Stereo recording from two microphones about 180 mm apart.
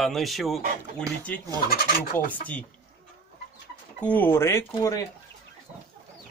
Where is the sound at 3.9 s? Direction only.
10° left (ahead or behind).